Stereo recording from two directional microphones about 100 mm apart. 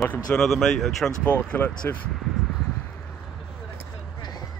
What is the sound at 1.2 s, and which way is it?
Speech, 15° left (ahead or behind).